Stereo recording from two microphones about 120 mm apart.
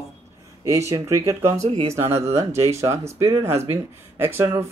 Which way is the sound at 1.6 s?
60° right (ahead or behind).